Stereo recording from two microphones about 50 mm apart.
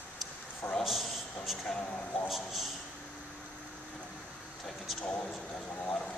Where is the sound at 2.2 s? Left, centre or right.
Centre.